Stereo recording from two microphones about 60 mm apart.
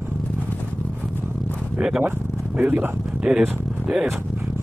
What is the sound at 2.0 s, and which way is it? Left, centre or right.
Speech, right.